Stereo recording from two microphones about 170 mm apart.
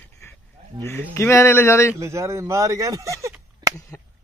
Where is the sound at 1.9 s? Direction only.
15° right (ahead or behind).